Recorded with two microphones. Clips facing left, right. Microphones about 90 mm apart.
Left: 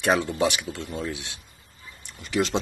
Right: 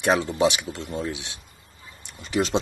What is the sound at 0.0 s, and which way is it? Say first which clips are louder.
Speech: right 2 dB; 15° right (ahead or behind).